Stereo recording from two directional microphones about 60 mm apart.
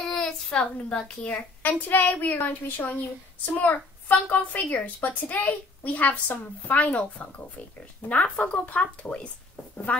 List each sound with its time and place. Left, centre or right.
0.1 s a child's voice: centre
1.3 s a woman's voice: left